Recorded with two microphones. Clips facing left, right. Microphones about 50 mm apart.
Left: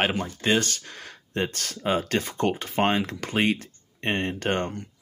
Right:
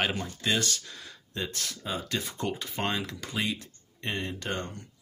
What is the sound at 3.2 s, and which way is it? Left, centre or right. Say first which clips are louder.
Speech: left 8 dB; left.